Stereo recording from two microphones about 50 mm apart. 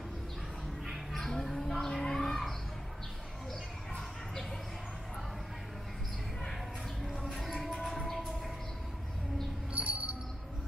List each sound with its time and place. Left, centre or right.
0.8 s a sound: centre
7.0 s music: centre
9.8 s tambourine: right